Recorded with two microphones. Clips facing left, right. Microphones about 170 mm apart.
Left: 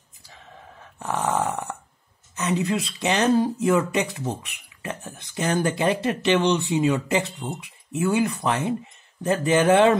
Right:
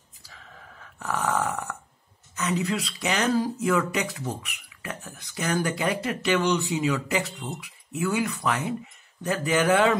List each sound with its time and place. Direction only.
0.3 s dog: 25° left (ahead or behind)
2.3 s speech: 20° left (ahead or behind)